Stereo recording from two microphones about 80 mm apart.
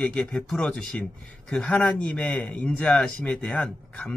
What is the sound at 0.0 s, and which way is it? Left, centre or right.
Speech, centre.